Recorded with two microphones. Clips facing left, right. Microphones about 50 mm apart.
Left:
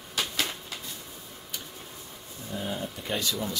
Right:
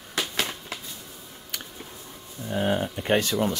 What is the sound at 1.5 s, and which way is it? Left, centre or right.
Tick, right.